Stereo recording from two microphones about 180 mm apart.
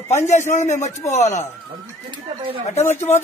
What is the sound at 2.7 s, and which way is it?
Speech, 40° left (ahead or behind).